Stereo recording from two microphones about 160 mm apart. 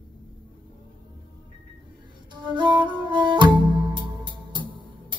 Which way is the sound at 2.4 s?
30° right (ahead or behind).